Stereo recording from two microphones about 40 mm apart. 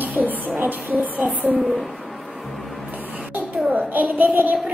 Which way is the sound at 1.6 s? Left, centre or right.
Centre.